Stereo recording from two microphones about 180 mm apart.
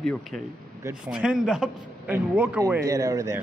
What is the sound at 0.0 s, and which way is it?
Speech, 5° left (ahead or behind).